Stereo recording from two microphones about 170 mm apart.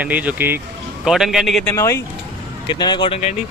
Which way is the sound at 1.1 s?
Centre (ahead or behind).